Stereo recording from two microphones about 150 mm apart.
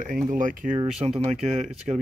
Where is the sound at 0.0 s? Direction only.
60° right (ahead or behind).